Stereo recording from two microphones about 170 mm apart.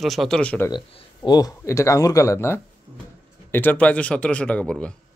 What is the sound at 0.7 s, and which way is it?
A man's voice, 25° left (ahead or behind).